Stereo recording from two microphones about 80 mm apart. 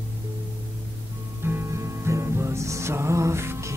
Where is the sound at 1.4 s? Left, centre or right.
Right.